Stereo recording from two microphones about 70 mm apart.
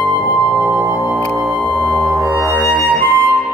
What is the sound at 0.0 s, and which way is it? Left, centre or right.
Music, centre.